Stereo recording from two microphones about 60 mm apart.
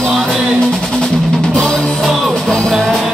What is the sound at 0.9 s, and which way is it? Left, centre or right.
Music, centre.